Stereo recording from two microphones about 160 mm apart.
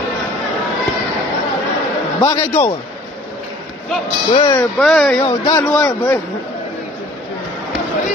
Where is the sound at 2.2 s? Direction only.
20° left (ahead or behind).